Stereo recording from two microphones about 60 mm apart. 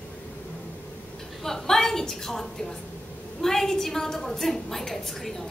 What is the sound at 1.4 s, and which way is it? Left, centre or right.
A woman's voice, centre.